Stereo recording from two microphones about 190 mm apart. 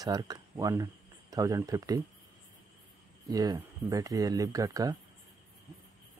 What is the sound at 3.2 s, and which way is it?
Speech, 20° right (ahead or behind).